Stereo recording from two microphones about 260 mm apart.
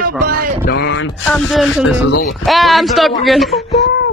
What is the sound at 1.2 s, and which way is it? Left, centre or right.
Speech, centre.